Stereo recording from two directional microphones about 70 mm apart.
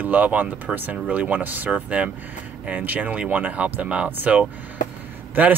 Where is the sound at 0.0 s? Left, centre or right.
Right.